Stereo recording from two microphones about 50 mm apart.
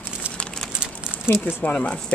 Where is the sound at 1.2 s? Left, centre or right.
Left.